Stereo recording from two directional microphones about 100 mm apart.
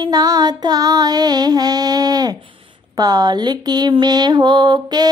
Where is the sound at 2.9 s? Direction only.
40° right (ahead or behind).